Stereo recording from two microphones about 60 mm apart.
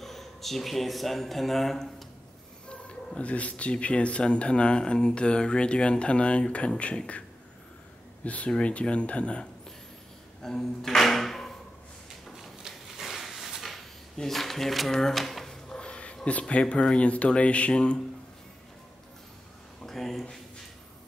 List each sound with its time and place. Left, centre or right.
0.0 s speech: centre
3.2 s speech: left
10.4 s speech: centre
12.3 s drawer open or close: centre
16.3 s speech: left
19.8 s speech: centre